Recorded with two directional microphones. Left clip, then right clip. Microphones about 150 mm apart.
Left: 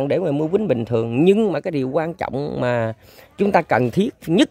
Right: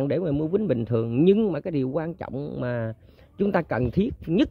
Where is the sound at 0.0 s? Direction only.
10° left (ahead or behind).